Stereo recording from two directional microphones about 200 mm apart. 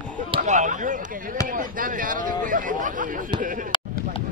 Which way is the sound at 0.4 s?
40° right (ahead or behind).